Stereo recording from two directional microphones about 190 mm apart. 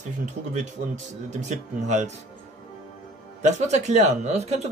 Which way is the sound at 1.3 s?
35° right (ahead or behind).